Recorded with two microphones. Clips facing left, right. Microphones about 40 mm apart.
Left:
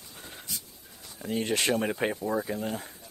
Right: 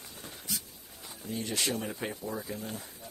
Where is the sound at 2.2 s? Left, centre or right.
Left.